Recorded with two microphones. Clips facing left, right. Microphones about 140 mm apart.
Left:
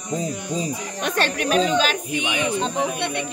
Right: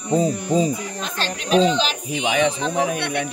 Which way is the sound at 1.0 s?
60° left (ahead or behind).